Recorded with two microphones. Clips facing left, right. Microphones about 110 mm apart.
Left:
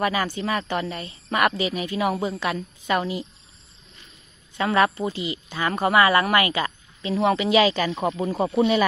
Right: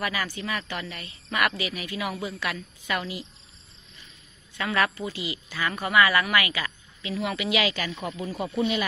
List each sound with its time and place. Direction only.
0.0 s speech: 30° left (ahead or behind)
4.6 s speech: 30° left (ahead or behind)